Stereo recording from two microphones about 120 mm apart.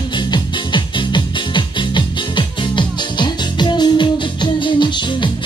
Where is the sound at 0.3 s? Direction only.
40° left (ahead or behind).